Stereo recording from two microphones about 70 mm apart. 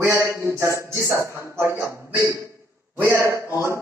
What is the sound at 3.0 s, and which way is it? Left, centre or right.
Speech, right.